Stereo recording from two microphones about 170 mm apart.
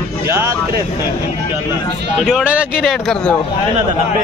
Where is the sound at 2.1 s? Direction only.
5° right (ahead or behind).